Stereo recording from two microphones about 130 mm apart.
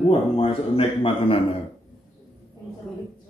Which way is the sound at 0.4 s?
45° left (ahead or behind).